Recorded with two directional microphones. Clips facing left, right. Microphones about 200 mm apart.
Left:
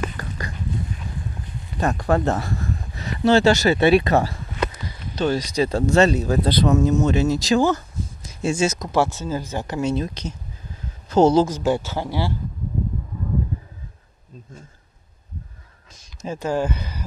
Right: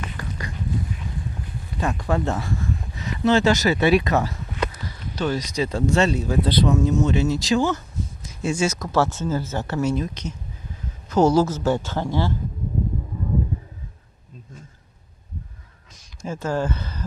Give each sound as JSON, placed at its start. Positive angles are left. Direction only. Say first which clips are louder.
{"t": 1.8, "sound": "speech", "louder": "left 3 dB", "side_deg": 40}
{"t": 9.9, "sound": "speech", "louder": "left 1 dB", "side_deg": 30}
{"t": 16.2, "sound": "speech", "louder": "left 2 dB", "side_deg": 15}